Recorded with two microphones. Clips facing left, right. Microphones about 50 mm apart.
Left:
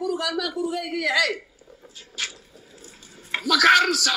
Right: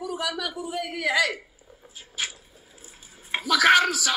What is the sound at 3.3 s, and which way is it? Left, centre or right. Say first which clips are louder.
Speech: left 1 dB; right.